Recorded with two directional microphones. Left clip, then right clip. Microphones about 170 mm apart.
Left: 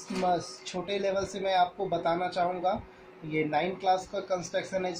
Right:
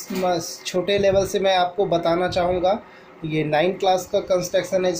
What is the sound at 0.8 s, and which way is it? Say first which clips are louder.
Speech: right 11 dB; 30° right (ahead or behind).